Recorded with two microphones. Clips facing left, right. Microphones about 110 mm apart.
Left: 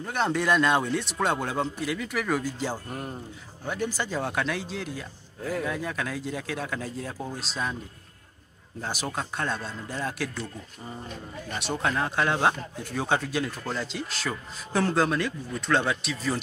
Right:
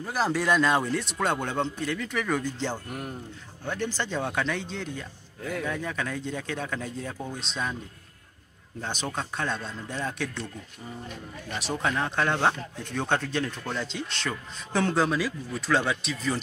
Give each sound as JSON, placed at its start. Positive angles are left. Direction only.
{"t": 0.0, "sound": "speech", "side_deg": -5}
{"t": 2.9, "sound": "speech", "side_deg": 30}
{"t": 3.6, "sound": "speech", "side_deg": 10}
{"t": 8.8, "sound": "speech", "side_deg": 5}
{"t": 11.5, "sound": "speech", "side_deg": 0}